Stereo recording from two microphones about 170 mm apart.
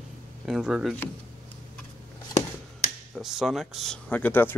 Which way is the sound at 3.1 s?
Centre (ahead or behind).